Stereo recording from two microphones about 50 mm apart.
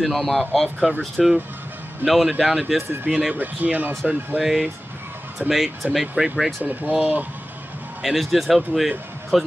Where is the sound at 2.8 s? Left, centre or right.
Right.